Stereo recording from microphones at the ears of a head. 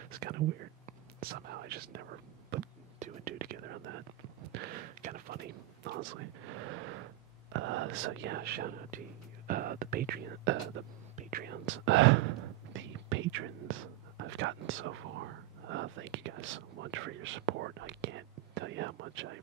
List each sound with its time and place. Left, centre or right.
0.0 s whispering: right
7.5 s speech: right